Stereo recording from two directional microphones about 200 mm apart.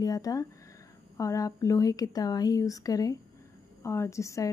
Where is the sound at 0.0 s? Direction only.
20° left (ahead or behind).